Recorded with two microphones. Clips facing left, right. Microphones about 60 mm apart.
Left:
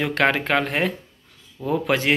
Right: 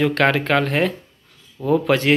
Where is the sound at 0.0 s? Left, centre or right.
Centre.